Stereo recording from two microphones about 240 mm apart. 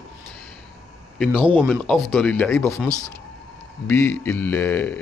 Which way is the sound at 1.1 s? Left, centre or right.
Centre.